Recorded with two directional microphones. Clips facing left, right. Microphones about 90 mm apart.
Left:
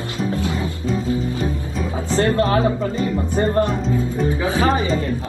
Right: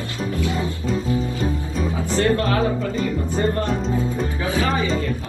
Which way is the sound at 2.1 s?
30° left (ahead or behind).